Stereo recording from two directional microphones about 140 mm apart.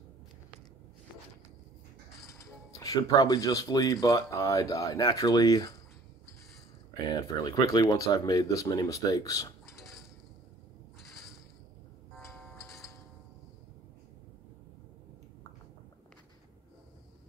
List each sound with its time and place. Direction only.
2.7 s speech: 25° left (ahead or behind)
7.4 s speech: 25° left (ahead or behind)